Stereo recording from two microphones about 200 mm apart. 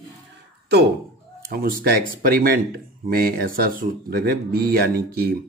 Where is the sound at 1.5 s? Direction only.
45° right (ahead or behind).